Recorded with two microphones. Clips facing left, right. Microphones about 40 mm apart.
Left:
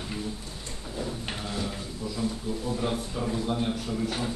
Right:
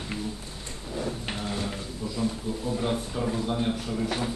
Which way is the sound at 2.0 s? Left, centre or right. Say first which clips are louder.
Right 1 dB; centre.